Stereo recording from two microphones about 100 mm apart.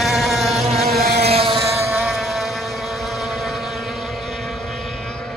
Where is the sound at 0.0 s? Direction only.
Centre (ahead or behind).